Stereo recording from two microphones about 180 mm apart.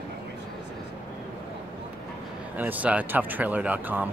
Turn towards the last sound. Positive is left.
turn(degrees=-10)  # may be behind; listen again after turning